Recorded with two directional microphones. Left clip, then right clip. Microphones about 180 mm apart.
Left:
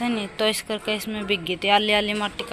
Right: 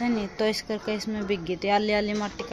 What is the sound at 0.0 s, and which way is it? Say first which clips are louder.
Speech: left 3 dB; 15° right (ahead or behind).